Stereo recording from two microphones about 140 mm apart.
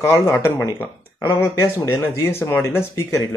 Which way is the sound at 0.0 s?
20° left (ahead or behind).